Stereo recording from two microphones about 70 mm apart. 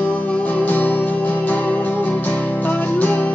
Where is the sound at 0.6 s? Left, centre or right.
Left.